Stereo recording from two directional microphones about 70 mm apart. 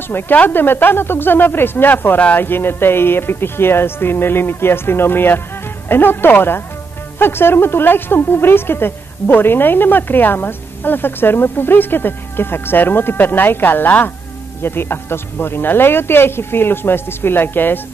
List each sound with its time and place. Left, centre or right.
0.1 s a woman's voice: left